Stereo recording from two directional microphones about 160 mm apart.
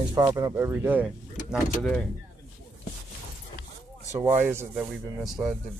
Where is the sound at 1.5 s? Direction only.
5° left (ahead or behind).